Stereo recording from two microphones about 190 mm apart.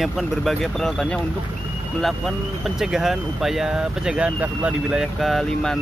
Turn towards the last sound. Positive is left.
turn(degrees=0)  # may be behind; listen again after turning